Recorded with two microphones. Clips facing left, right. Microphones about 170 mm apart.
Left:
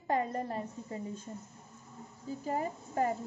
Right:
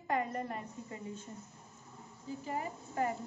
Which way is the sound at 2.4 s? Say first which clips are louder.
Left 5 dB; 40° left (ahead or behind).